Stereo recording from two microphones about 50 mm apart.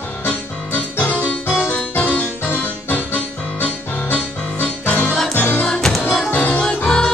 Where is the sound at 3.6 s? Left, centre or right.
Left.